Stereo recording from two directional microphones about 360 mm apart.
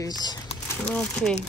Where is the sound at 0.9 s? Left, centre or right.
Centre.